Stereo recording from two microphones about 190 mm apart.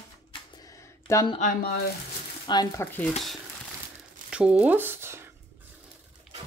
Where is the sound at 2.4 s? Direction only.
20° left (ahead or behind).